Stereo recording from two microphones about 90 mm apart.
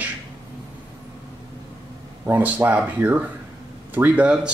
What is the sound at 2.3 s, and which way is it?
Speech, 20° right (ahead or behind).